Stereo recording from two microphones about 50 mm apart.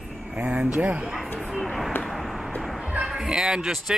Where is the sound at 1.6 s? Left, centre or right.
Centre.